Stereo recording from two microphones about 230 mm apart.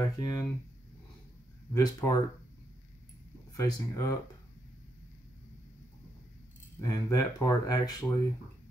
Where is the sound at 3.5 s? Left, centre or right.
Centre.